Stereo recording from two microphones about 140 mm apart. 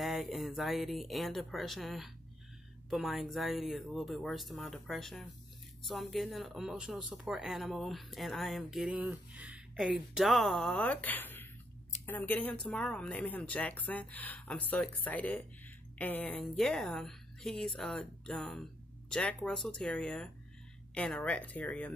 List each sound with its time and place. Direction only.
0.0 s speech: centre (ahead or behind)